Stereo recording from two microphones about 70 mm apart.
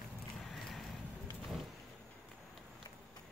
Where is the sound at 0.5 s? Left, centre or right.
Centre.